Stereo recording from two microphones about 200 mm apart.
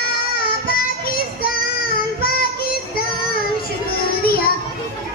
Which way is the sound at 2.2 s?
50° left (ahead or behind).